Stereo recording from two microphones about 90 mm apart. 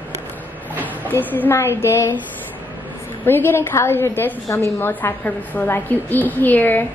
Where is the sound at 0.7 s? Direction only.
20° left (ahead or behind).